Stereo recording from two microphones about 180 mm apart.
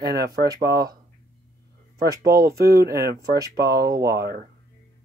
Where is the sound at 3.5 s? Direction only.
60° right (ahead or behind).